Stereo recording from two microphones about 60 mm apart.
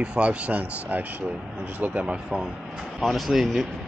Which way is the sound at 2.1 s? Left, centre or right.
Centre.